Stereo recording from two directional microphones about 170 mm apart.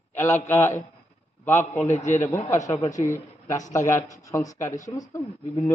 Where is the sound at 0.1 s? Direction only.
15° left (ahead or behind).